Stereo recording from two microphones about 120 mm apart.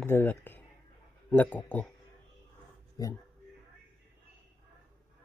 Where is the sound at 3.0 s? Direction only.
30° left (ahead or behind).